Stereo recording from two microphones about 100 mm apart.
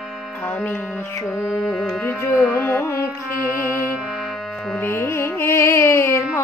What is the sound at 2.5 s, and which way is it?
Carnatic music, 25° left (ahead or behind).